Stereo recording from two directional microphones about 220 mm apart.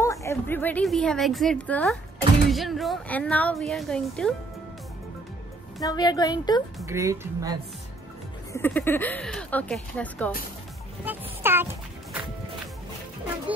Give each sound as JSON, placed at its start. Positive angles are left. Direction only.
{"t": 0.0, "sound": "a woman's voice", "side_deg": 15}
{"t": 5.8, "sound": "speech", "side_deg": 20}
{"t": 6.9, "sound": "speech", "side_deg": -15}
{"t": 8.5, "sound": "speech", "side_deg": 10}
{"t": 11.1, "sound": "speech", "side_deg": -10}